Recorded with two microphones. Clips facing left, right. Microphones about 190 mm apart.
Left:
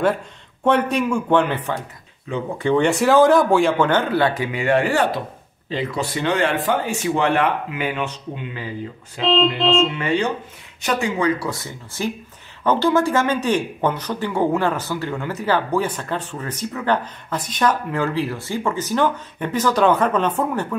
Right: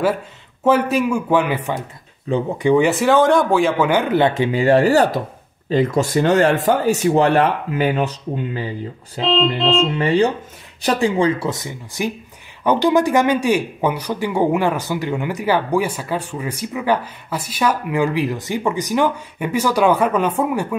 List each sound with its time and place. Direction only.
0.7 s speech: 5° right (ahead or behind)
2.3 s speech: 35° right (ahead or behind)
2.6 s speech: 10° right (ahead or behind)
4.1 s speech: 20° right (ahead or behind); by 8.6 s 40° right (ahead or behind)
9.2 s speech: centre (ahead or behind)
9.9 s speech: 35° right (ahead or behind); by 20.6 s 10° right (ahead or behind)